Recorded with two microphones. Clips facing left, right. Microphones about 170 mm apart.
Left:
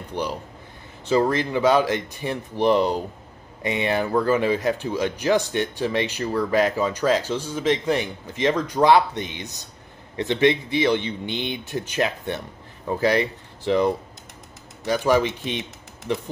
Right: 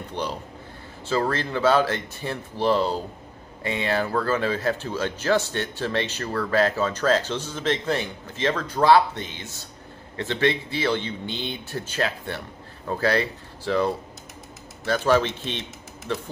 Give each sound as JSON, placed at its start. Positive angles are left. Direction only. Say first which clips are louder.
{"t": 0.1, "sound": "speech", "louder": "left 3 dB", "side_deg": 10}